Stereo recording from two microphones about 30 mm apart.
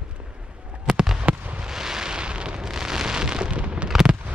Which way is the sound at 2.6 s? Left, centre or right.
Centre.